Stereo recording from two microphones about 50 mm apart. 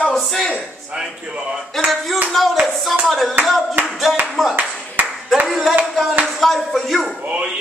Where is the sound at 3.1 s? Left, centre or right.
Centre.